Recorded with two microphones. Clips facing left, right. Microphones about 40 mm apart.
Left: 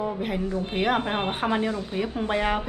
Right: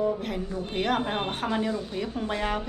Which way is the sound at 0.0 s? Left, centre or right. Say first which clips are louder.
Even; centre.